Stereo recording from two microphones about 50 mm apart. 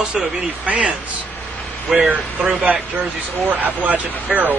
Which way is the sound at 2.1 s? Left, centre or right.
Right.